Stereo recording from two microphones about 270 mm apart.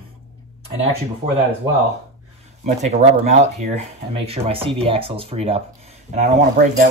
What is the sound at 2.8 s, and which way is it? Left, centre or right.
Speech, right.